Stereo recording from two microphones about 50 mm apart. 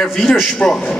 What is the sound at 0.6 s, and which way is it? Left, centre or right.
Speech, centre.